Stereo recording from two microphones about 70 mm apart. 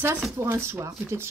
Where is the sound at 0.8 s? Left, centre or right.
Right.